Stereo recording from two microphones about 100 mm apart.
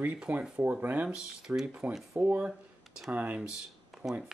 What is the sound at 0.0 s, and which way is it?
Speech, 15° right (ahead or behind).